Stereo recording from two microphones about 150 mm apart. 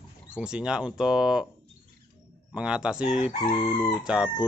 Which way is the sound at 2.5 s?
5° right (ahead or behind).